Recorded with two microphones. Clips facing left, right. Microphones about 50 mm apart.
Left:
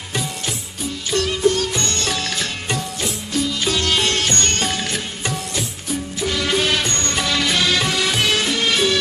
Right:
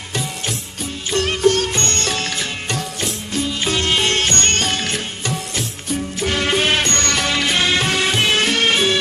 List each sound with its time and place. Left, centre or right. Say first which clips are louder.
1.1 s music: right 2 dB; right
6.1 s music: right 1 dB; right
6.8 s music: right 3 dB; right
7.3 s music: left 1 dB; right
8.4 s music: right 3 dB; right